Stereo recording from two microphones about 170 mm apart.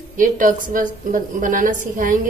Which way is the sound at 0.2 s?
50° right (ahead or behind).